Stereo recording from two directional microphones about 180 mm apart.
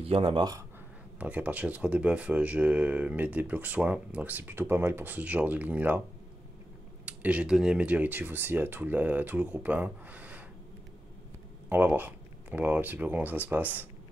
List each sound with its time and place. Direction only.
0.0 s speech: 30° right (ahead or behind)
1.2 s speech: 10° right (ahead or behind)
7.1 s speech: 5° right (ahead or behind)
11.7 s speech: 10° right (ahead or behind)